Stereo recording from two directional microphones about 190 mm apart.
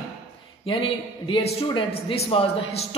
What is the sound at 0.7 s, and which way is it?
A man's voice, 30° left (ahead or behind).